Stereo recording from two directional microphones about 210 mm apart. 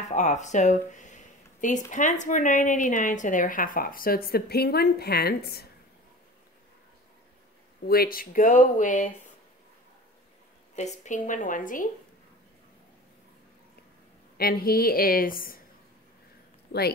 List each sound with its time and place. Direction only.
0.1 s a woman's voice: 35° left (ahead or behind)
7.8 s a woman's voice: 45° left (ahead or behind)
10.8 s a woman's voice: 35° left (ahead or behind)
14.3 s a woman's voice: 45° left (ahead or behind)
16.7 s speech: 50° left (ahead or behind)